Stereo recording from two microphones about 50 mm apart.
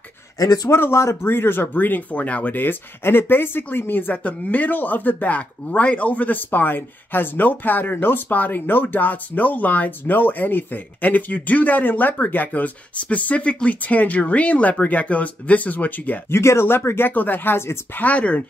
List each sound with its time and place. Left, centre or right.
0.7 s speech: left
2.1 s speech: left
2.5 s speech: left
16.3 s speech: left
17.1 s speech: left
17.9 s speech: left